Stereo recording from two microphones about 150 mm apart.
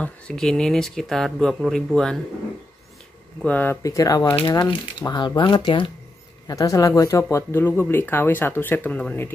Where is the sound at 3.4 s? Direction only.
10° left (ahead or behind).